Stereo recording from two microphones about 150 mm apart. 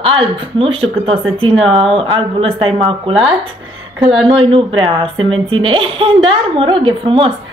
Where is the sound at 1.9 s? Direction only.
35° right (ahead or behind).